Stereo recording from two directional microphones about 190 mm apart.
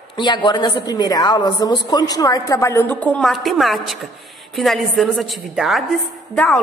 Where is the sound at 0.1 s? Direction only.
25° left (ahead or behind).